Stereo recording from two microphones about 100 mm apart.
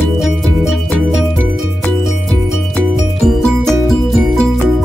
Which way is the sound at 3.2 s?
5° left (ahead or behind).